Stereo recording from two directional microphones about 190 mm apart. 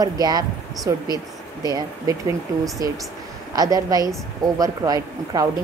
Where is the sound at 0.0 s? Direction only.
20° right (ahead or behind).